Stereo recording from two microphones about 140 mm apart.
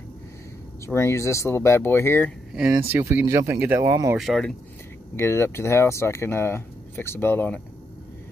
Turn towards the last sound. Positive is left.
turn(degrees=10)  # may be behind; listen again after turning